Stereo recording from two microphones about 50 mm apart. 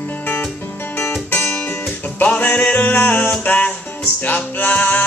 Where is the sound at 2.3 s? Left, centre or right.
Left.